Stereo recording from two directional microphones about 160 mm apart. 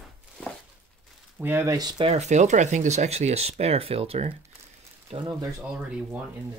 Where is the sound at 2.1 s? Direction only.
45° right (ahead or behind).